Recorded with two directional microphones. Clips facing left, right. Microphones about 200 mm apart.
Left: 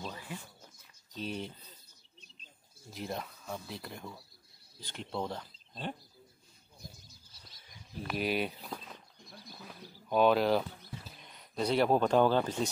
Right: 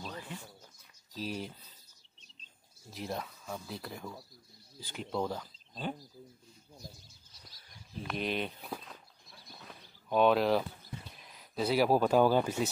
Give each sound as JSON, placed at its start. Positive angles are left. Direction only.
{"t": 1.1, "sound": "speech", "side_deg": -5}
{"t": 2.9, "sound": "speech", "side_deg": 0}
{"t": 7.1, "sound": "bird", "side_deg": 25}
{"t": 8.1, "sound": "speech", "side_deg": 5}
{"t": 8.6, "sound": "a sound", "side_deg": -5}
{"t": 11.1, "sound": "speech", "side_deg": 0}